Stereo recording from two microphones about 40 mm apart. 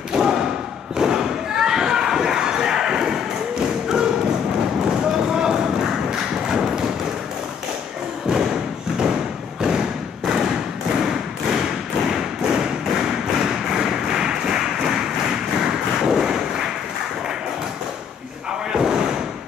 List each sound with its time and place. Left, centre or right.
0.1 s thump: centre
0.9 s slam: centre
4.8 s thump: centre
8.9 s thump: centre
18.7 s slam: centre